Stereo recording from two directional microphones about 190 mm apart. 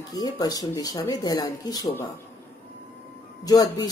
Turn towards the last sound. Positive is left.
turn(degrees=20)  # may be behind; listen again after turning